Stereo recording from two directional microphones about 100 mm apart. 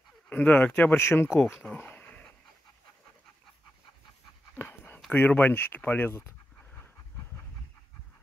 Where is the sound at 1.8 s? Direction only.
20° left (ahead or behind).